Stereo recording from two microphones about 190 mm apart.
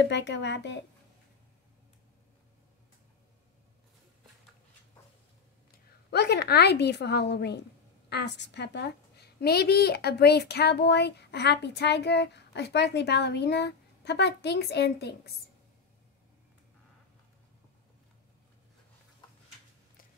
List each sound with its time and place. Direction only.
0.0 s speech: 65° left (ahead or behind)
6.0 s a woman's voice: 60° left (ahead or behind)